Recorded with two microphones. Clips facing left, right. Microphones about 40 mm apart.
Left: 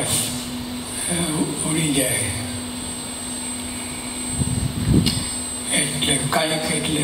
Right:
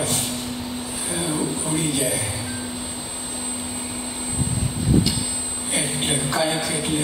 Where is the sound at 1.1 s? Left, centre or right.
Centre.